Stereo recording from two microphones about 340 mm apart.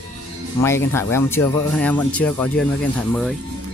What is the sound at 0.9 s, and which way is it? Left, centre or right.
Speech, centre.